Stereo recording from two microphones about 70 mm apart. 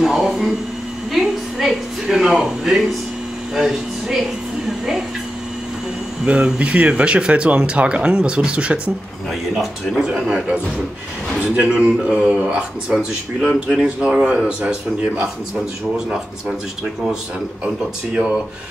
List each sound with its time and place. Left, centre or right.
0.0 s a sound: centre
3.5 s speech: centre
6.2 s speech: centre
9.3 s speech: centre
12.9 s speech: centre; by 15.2 s right